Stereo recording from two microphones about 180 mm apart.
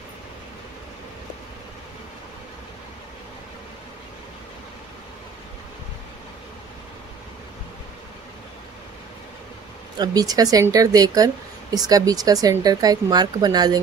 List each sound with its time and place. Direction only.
9.9 s speech: 20° right (ahead or behind)